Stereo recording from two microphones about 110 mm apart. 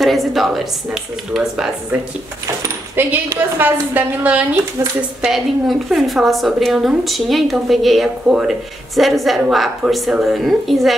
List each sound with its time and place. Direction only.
0.0 s a woman's voice: centre (ahead or behind)
3.0 s a woman's voice: 20° right (ahead or behind)
5.2 s a woman's voice: centre (ahead or behind)